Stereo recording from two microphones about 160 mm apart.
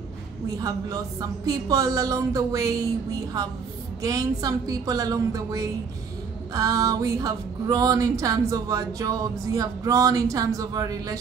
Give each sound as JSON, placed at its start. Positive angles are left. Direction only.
{"t": 0.6, "sound": "speech", "side_deg": -25}